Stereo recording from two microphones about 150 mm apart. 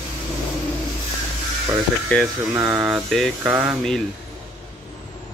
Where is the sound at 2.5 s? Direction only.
15° right (ahead or behind).